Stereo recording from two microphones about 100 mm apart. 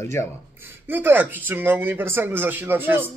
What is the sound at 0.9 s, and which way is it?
A man's voice, 20° right (ahead or behind).